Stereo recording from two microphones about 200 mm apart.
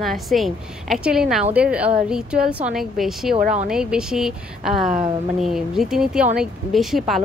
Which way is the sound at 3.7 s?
5° right (ahead or behind).